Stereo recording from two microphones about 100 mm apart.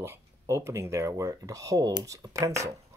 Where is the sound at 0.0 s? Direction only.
25° right (ahead or behind).